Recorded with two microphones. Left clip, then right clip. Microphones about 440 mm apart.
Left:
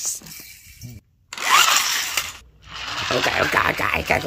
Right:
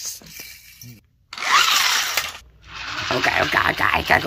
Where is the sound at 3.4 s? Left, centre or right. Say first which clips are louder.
Right 1 dB; centre.